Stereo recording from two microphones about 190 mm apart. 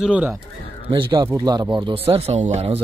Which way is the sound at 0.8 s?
25° right (ahead or behind).